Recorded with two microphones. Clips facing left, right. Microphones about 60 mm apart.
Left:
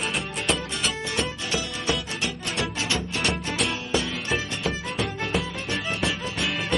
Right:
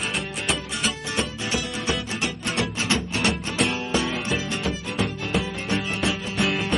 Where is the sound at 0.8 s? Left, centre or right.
Right.